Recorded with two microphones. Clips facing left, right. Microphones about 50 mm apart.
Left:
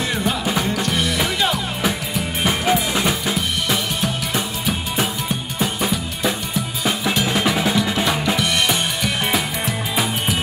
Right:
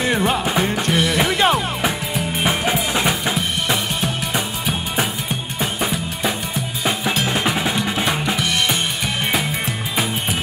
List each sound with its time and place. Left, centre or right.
0.0 s music: right
2.7 s drum kit: right
7.2 s percussion: centre
7.7 s music: right